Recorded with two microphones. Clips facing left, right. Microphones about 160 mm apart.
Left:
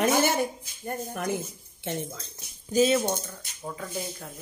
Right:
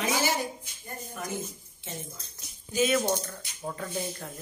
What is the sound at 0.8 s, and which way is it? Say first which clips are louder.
Speech: left 8 dB; 65° left (ahead or behind).